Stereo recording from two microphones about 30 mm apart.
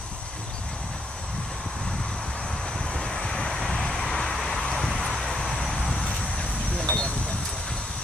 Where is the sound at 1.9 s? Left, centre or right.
Centre; by 3.5 s left.